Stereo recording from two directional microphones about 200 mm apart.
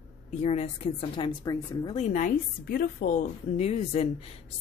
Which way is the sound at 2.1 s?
45° left (ahead or behind).